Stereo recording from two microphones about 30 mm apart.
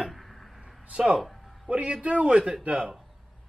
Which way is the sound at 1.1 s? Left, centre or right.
Centre.